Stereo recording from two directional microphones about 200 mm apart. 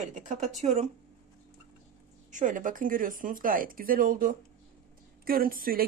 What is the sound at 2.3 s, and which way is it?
Speech, 40° right (ahead or behind).